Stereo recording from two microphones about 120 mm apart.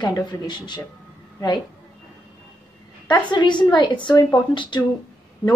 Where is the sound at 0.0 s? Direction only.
35° left (ahead or behind).